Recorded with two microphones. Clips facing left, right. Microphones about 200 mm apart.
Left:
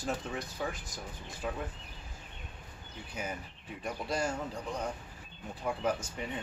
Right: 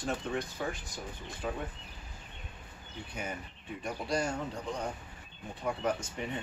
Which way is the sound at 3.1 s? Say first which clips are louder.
Left 1 dB; 5° left (ahead or behind).